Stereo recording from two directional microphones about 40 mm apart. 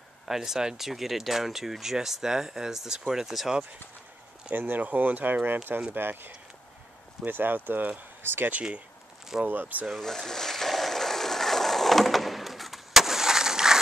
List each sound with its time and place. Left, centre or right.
0.3 s speech: centre
4.6 s speech: right
9.4 s speech: right
9.9 s a sound: centre